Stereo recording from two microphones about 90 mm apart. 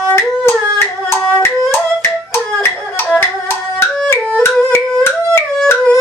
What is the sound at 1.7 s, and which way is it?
Music, 25° left (ahead or behind).